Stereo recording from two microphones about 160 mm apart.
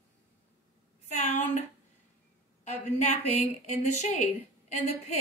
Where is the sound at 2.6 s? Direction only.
45° left (ahead or behind).